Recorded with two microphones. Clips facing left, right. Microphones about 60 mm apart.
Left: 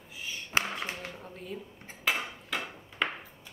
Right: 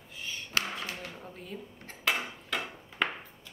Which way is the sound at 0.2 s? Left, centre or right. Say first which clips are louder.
Even; centre.